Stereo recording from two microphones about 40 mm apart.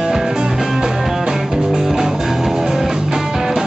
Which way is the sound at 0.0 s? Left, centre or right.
Centre.